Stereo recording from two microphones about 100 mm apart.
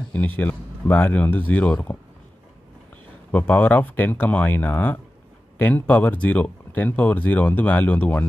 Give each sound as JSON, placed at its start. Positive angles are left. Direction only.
{"t": 0.1, "sound": "speech", "side_deg": 15}
{"t": 3.3, "sound": "speech", "side_deg": 15}